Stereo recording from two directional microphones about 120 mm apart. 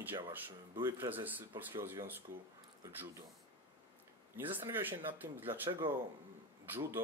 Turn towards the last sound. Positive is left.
turn(degrees=-20)  # may be behind; listen again after turning